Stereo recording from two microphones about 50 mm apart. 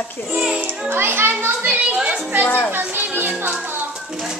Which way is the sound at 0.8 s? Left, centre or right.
Right.